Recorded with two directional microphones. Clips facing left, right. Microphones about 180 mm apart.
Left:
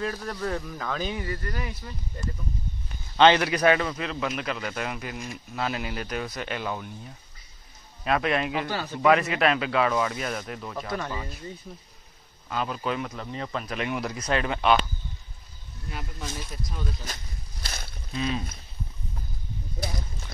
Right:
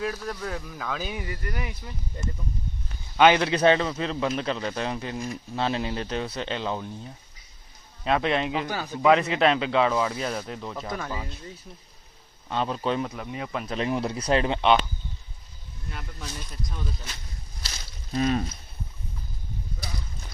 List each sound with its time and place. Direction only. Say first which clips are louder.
0.0 s speech: even; centre (ahead or behind)
3.3 s a man's voice: right 2 dB; 25° right (ahead or behind)
8.0 s a man's voice: right 1 dB; 25° right (ahead or behind)
9.1 s a man's voice: right 2 dB; 25° right (ahead or behind)
11.0 s speech: even; 5° right (ahead or behind)
12.4 s a man's voice: right 2 dB; 30° right (ahead or behind)
13.1 s speech: even; 10° right (ahead or behind)
13.7 s a man's voice: right 6 dB; 30° right (ahead or behind)
15.9 s speech: left 2 dB; 5° left (ahead or behind)
17.6 s a sound: left 5 dB; 60° left (ahead or behind)
18.1 s speech: right 5 dB; 50° right (ahead or behind)